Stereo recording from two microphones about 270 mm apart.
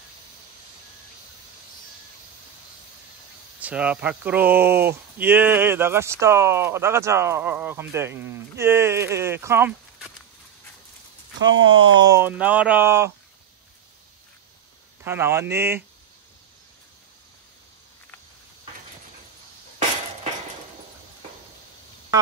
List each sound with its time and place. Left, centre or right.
3.5 s speech: centre
11.3 s speech: right
12.1 s speech: centre
15.0 s speech: centre